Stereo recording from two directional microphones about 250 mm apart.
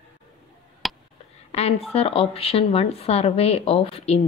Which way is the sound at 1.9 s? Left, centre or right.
Left.